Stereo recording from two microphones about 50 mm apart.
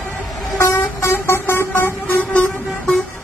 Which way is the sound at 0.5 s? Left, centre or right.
Left.